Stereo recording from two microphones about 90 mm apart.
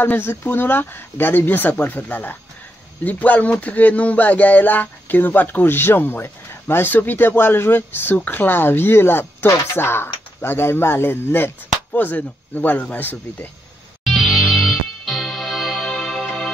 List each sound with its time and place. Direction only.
0.0 s speech: 25° left (ahead or behind)
14.0 s music: 5° right (ahead or behind)